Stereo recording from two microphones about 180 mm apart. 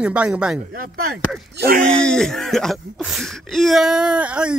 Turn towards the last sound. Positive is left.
turn(degrees=-5)  # may be behind; listen again after turning